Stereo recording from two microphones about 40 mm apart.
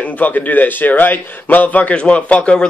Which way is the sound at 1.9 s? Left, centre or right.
Left.